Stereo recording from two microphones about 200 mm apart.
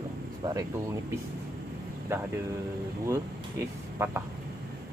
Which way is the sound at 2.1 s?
15° right (ahead or behind).